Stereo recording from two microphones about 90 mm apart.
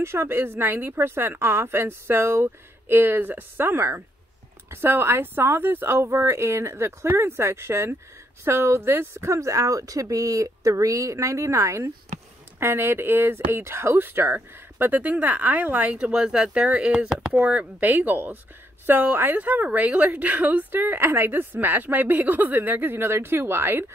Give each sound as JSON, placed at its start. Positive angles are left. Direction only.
{"t": 0.0, "sound": "a woman's voice", "side_deg": -30}